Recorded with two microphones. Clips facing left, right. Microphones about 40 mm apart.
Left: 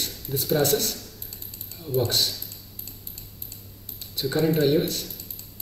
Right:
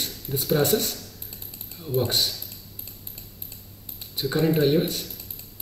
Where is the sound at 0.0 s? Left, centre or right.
Centre.